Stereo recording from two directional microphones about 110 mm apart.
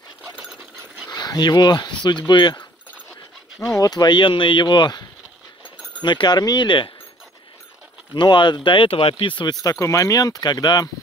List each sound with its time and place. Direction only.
0.2 s dog: 10° right (ahead or behind)
1.0 s speech: 40° left (ahead or behind)
3.7 s speech: 35° left (ahead or behind)
6.0 s speech: 45° left (ahead or behind)
8.1 s speech: 45° left (ahead or behind)